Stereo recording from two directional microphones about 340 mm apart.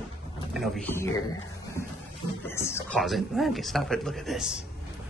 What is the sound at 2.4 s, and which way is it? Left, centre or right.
Speech, centre.